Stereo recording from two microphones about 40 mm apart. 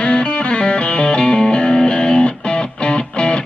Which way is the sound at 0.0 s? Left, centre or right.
Left.